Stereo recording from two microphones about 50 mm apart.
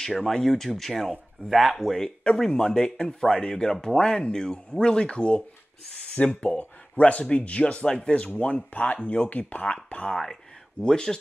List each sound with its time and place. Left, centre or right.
0.2 s speech: centre
2.0 s speech: centre; by 10.1 s left
10.8 s speech: centre